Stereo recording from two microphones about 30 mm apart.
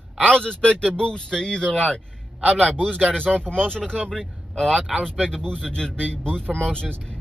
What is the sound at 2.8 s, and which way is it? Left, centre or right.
Speech, centre.